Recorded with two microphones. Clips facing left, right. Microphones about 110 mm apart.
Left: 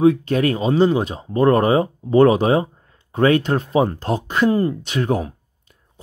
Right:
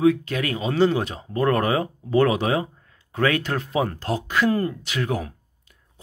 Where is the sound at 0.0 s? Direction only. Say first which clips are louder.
Left 5 dB; 30° left (ahead or behind).